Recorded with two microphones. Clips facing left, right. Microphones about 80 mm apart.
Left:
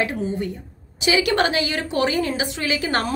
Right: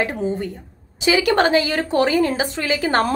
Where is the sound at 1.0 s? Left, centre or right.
Right.